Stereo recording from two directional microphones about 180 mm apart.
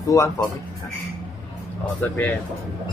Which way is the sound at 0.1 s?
20° left (ahead or behind).